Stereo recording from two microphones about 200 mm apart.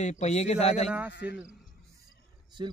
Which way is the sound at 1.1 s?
55° left (ahead or behind).